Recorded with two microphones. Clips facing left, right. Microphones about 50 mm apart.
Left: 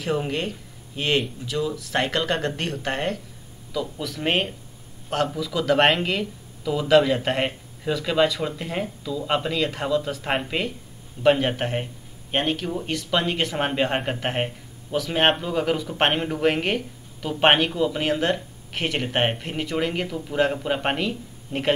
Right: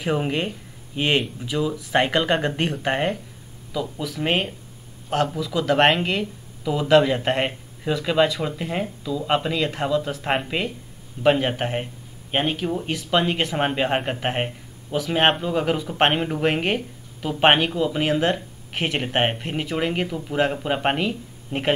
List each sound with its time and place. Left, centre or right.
0.0 s speech: centre
3.7 s speech: centre